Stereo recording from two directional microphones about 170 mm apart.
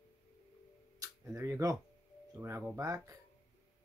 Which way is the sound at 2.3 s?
10° right (ahead or behind).